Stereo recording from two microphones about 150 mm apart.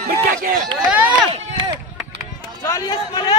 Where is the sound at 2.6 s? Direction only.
25° left (ahead or behind).